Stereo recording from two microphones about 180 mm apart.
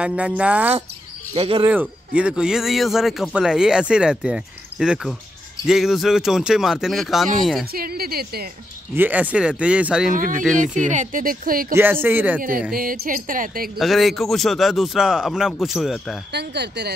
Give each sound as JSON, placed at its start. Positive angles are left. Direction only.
{"t": 0.0, "sound": "speech", "side_deg": -5}
{"t": 1.3, "sound": "speech", "side_deg": -30}
{"t": 1.7, "sound": "speech", "side_deg": -5}
{"t": 7.7, "sound": "a woman's voice", "side_deg": -55}
{"t": 8.9, "sound": "speech", "side_deg": -10}
{"t": 10.1, "sound": "speech", "side_deg": -50}
{"t": 11.7, "sound": "speech", "side_deg": -10}
{"t": 12.4, "sound": "speech", "side_deg": -50}
{"t": 13.7, "sound": "speech", "side_deg": 0}
{"t": 16.3, "sound": "speech", "side_deg": -70}